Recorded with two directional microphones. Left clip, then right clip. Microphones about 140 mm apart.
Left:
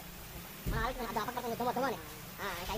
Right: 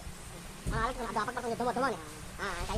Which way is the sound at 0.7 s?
40° right (ahead or behind).